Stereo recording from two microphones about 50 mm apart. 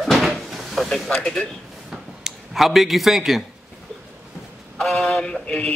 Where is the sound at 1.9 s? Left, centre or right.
Centre.